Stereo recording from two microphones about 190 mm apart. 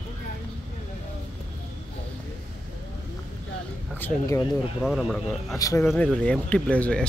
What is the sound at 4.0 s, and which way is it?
Speech, 15° left (ahead or behind).